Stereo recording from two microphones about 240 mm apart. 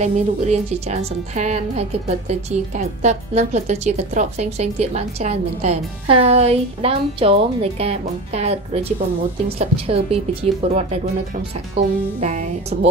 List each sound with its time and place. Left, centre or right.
0.0 s a woman's voice: right